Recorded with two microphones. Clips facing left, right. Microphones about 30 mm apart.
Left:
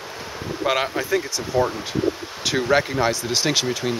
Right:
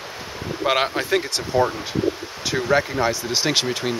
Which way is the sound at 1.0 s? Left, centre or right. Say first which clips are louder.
Right 1 dB; right.